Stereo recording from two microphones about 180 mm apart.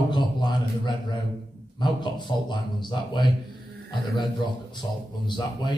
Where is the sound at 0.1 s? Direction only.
25° left (ahead or behind).